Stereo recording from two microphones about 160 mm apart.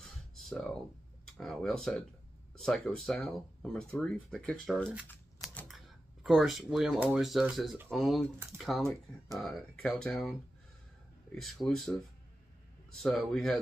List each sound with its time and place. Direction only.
0.4 s a sound: centre (ahead or behind)
1.2 s speech: centre (ahead or behind)
5.0 s shuffling cards: 10° left (ahead or behind)
5.7 s speech: centre (ahead or behind)
11.4 s speech: centre (ahead or behind)
12.9 s speech: centre (ahead or behind)